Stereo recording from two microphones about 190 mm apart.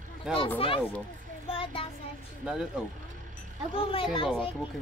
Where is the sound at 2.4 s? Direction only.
5° right (ahead or behind).